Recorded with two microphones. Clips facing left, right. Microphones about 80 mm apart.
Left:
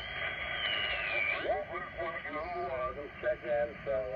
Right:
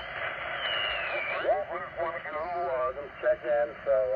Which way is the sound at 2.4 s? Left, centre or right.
Right.